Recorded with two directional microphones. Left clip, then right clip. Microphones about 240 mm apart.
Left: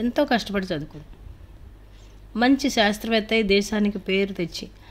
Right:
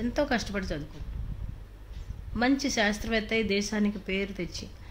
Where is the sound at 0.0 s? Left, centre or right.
Centre.